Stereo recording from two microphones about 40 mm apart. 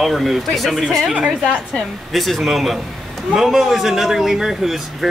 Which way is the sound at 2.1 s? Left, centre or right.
Centre.